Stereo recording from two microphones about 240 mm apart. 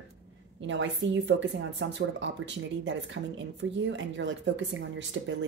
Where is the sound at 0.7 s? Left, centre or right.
Right.